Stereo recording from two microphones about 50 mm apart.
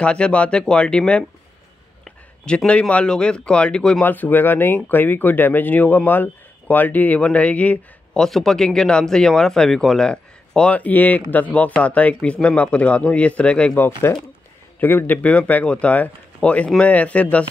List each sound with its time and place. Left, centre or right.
0.0 s speech: left
2.4 s speech: centre
4.0 s speech: left
7.2 s speech: left
8.3 s speech: centre
10.7 s speech: left
13.7 s a man's voice: left
15.2 s speech: left